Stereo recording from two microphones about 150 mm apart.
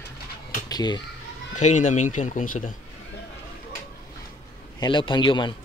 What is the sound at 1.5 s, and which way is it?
Speech, 55° left (ahead or behind).